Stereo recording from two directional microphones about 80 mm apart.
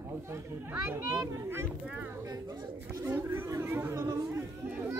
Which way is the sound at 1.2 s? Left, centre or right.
Right.